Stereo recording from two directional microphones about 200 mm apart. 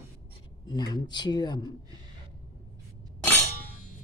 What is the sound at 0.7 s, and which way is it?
Dishes, 20° left (ahead or behind).